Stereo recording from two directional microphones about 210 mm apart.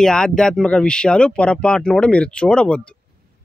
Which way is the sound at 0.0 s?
5° left (ahead or behind).